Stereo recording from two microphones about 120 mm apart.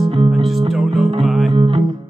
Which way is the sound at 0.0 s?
50° right (ahead or behind).